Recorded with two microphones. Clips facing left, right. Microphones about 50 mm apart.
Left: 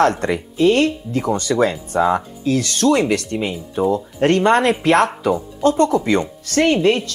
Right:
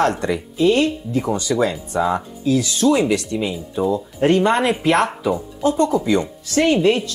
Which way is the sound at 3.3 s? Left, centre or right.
Left.